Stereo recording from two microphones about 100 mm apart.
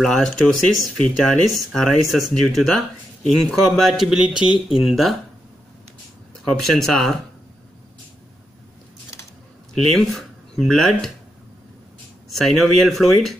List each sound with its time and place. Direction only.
0.0 s speech: 5° left (ahead or behind)
6.6 s speech: 5° left (ahead or behind)
9.9 s speech: centre (ahead or behind)
12.3 s speech: centre (ahead or behind)